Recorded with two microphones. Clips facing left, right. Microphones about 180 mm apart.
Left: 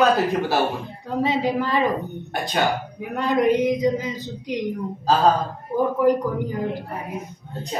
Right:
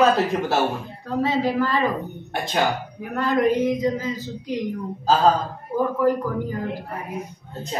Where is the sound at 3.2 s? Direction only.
15° left (ahead or behind).